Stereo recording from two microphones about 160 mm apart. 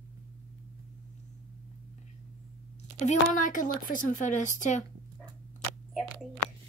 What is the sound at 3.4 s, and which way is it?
Speech, 55° left (ahead or behind).